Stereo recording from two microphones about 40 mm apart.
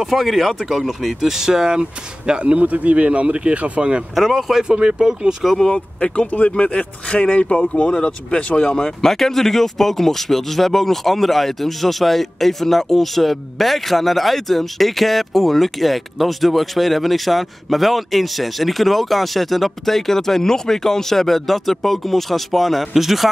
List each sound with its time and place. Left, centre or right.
0.0 s speech: centre; by 2.5 s right
2.5 s speech: right
4.1 s speech: centre
4.6 s speech: right
5.7 s speech: left
7.9 s speech: left; by 23.2 s centre